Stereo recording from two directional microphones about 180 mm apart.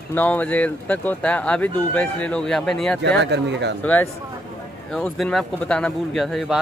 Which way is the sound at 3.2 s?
75° right (ahead or behind).